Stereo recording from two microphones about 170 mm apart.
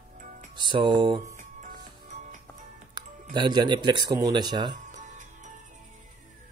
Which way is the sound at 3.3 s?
25° right (ahead or behind).